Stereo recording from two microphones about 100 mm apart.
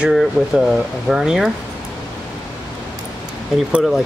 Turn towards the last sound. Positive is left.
turn(degrees=0)  # may be behind; listen again after turning